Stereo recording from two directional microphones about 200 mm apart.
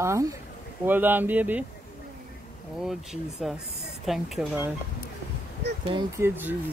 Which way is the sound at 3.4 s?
5° right (ahead or behind).